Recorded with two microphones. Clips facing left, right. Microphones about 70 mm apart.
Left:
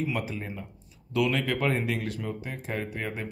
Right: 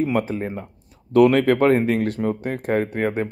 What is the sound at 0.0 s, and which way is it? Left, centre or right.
Speech, right.